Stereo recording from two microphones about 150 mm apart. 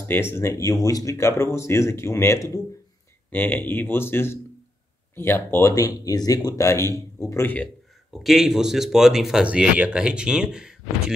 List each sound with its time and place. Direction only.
0.1 s speech: 15° left (ahead or behind)
8.2 s speech: centre (ahead or behind)